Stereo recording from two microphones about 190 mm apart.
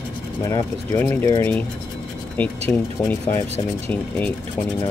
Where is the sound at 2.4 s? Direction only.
10° left (ahead or behind).